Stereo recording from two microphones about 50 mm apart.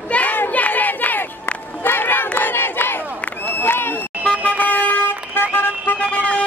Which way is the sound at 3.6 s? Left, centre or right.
Left.